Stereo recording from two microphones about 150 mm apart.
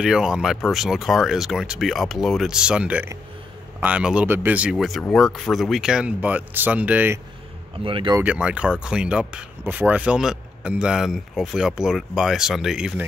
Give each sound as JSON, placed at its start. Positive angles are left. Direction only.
{"t": 0.0, "sound": "speech", "side_deg": -5}
{"t": 7.8, "sound": "speech", "side_deg": -35}
{"t": 8.2, "sound": "speech", "side_deg": -10}